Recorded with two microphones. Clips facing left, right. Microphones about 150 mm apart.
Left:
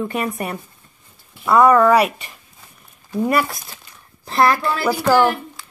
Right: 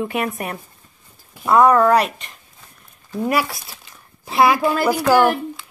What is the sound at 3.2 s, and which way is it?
Speech, 5° right (ahead or behind).